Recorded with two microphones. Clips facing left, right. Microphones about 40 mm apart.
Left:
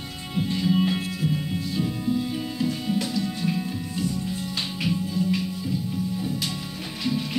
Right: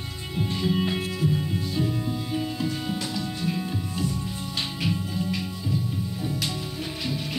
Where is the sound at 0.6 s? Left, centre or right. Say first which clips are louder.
Left 2 dB; centre.